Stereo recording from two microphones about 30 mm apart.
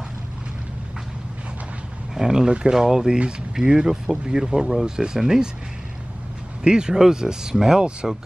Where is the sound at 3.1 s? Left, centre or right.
Right.